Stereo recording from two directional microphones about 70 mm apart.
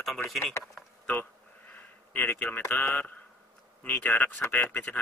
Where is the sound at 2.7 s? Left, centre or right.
Left.